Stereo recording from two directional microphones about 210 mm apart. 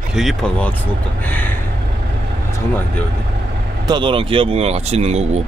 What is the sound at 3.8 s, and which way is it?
Speech, 20° right (ahead or behind).